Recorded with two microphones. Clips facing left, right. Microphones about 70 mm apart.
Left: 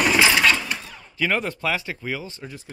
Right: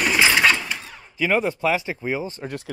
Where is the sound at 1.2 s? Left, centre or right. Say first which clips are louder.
Right 3 dB; centre.